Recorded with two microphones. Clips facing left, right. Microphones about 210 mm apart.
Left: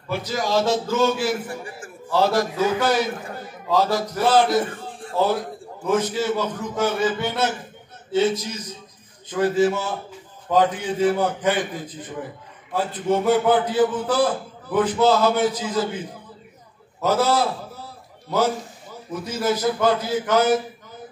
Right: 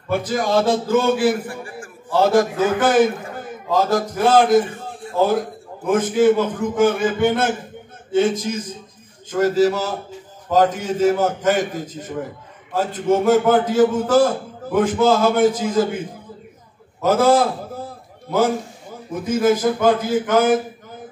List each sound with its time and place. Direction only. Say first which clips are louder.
0.1 s a man's voice: right 4 dB; 50° right (ahead or behind)
5.9 s a man's voice: right 6 dB; 50° right (ahead or behind)
17.0 s a sound: right 5 dB; 50° right (ahead or behind)
19.2 s a man's voice: right 6 dB; 50° right (ahead or behind)